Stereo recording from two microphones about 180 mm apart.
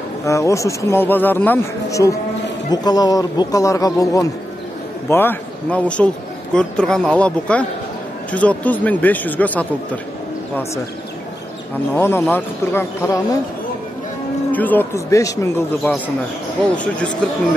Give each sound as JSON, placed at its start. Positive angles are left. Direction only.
{"t": 0.2, "sound": "a man's voice", "side_deg": 15}
{"t": 11.9, "sound": "speech", "side_deg": 15}
{"t": 14.5, "sound": "speech", "side_deg": 10}